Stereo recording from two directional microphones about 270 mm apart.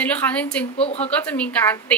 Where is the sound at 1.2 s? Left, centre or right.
Centre.